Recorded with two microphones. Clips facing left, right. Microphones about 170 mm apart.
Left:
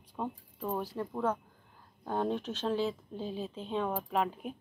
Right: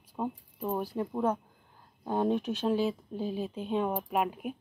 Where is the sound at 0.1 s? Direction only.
10° right (ahead or behind).